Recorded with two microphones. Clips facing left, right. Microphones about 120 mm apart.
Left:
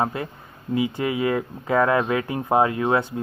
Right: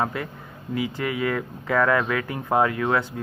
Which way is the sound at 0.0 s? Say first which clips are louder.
Left 2 dB; 25° left (ahead or behind).